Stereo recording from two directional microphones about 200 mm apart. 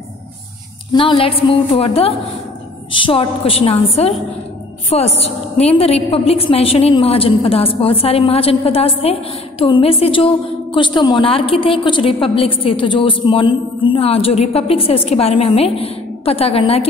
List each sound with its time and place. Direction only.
0.9 s a woman's voice: 25° left (ahead or behind)